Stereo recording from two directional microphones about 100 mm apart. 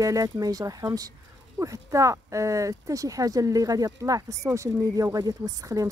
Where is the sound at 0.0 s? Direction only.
35° right (ahead or behind).